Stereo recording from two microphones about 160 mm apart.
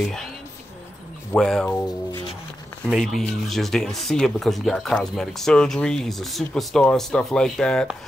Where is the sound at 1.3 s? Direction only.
5° left (ahead or behind).